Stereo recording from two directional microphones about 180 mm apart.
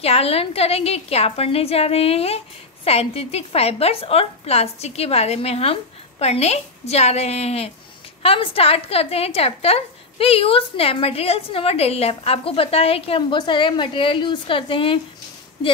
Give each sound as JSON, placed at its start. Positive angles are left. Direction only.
{"t": 0.0, "sound": "a woman's voice", "side_deg": 35}